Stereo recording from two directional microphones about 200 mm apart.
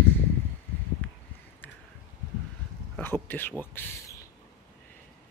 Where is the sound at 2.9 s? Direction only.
10° left (ahead or behind).